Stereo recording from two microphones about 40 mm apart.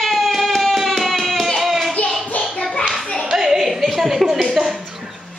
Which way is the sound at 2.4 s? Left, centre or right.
Centre.